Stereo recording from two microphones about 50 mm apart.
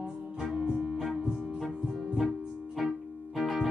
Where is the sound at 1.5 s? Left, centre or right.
Centre.